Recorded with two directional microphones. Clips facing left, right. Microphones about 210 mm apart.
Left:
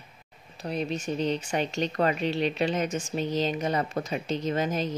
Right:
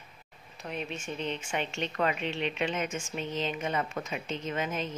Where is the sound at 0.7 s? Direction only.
35° left (ahead or behind).